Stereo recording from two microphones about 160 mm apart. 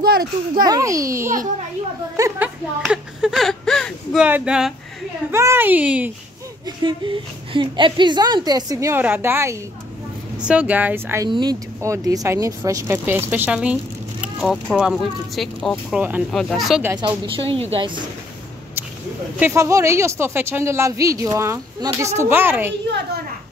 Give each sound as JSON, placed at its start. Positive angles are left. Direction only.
{"t": 0.0, "sound": "a child's voice", "side_deg": -75}
{"t": 0.7, "sound": "a woman's voice", "side_deg": -20}
{"t": 2.8, "sound": "speech", "side_deg": -5}
{"t": 5.3, "sound": "speech", "side_deg": -15}
{"t": 6.8, "sound": "a woman's voice", "side_deg": -30}
{"t": 11.2, "sound": "a woman's voice", "side_deg": -25}
{"t": 16.3, "sound": "speech", "side_deg": 5}
{"t": 17.4, "sound": "a woman's voice", "side_deg": -35}
{"t": 19.4, "sound": "speech", "side_deg": -20}